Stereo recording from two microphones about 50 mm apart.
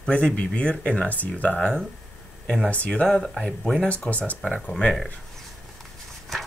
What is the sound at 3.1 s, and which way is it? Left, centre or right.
Speech, centre.